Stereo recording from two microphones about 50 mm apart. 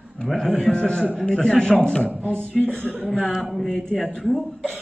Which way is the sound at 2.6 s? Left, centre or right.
Centre.